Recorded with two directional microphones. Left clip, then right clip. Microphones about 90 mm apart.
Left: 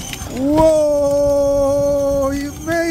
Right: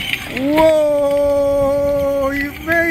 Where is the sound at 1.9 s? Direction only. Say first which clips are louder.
Even; 20° left (ahead or behind).